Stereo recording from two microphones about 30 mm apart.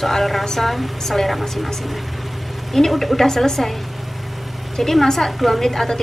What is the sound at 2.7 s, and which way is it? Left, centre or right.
Speech, centre.